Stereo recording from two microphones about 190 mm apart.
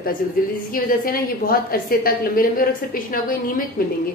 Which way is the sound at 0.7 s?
50° left (ahead or behind).